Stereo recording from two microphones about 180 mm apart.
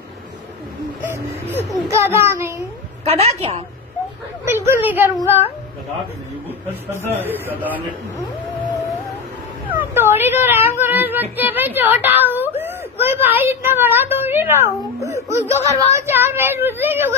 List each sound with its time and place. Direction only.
1.0 s a sound: 10° right (ahead or behind)
1.9 s speech: 15° right (ahead or behind)
3.1 s a woman's voice: 35° right (ahead or behind)
4.5 s speech: 10° right (ahead or behind)
7.2 s speech: 10° right (ahead or behind)
9.7 s speech: 10° right (ahead or behind)
10.8 s child singing: 10° right (ahead or behind)
11.3 s speech: 10° right (ahead or behind)
13.0 s a sound: 10° right (ahead or behind)
15.5 s speech: 40° left (ahead or behind)
16.1 s a woman's voice: 10° right (ahead or behind)